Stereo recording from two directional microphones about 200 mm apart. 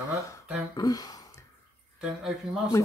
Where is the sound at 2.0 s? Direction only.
5° right (ahead or behind).